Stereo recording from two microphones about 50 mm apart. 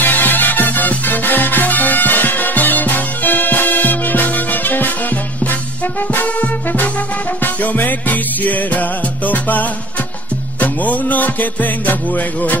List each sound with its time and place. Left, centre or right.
0.0 s music: left
6.2 s music: left